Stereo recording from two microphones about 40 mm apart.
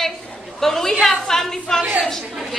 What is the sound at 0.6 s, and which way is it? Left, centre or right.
A woman's voice, centre.